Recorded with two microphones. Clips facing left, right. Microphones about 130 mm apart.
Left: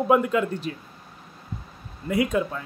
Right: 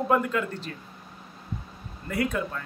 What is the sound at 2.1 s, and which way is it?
Speech, 15° left (ahead or behind).